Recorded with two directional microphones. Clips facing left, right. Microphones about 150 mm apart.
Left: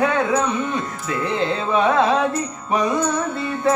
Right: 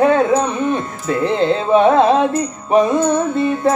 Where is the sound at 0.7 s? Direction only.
25° right (ahead or behind).